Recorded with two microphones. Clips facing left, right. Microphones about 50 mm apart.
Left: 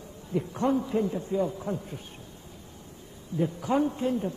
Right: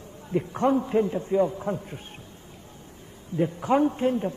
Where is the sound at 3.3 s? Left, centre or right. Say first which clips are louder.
Right 3 dB; right.